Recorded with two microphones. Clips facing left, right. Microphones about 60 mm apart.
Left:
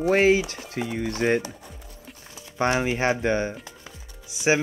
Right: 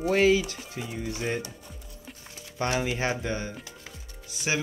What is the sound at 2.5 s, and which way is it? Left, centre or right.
Speech, left.